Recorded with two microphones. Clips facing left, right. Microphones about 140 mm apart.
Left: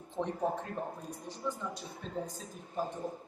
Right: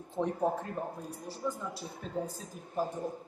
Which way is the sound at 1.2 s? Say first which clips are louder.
Right 2 dB; 35° right (ahead or behind).